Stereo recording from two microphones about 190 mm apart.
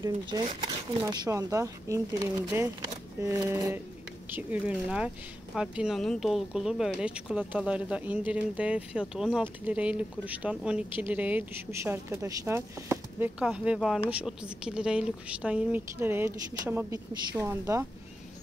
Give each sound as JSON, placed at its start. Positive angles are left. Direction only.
{"t": 0.0, "sound": "speech", "side_deg": -20}